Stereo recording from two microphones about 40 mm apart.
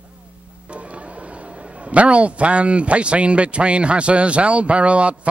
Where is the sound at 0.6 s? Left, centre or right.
Right.